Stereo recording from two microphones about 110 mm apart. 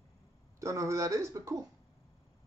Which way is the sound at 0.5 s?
30° right (ahead or behind).